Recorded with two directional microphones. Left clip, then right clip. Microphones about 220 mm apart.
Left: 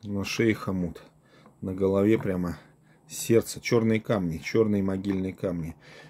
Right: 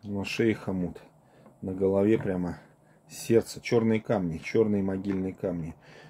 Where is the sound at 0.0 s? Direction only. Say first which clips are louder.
Left 1 dB; 30° left (ahead or behind).